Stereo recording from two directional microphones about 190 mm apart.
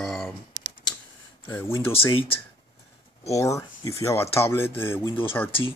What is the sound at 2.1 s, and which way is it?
Speech, 30° left (ahead or behind).